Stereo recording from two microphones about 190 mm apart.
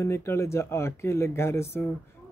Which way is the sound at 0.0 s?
15° left (ahead or behind).